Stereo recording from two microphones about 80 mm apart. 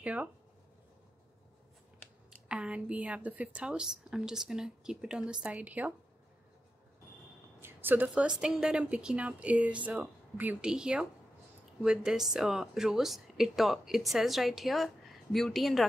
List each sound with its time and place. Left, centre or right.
0.0 s speech: centre
2.4 s a woman's voice: centre
7.6 s a woman's voice: right
8.3 s a woman's voice: centre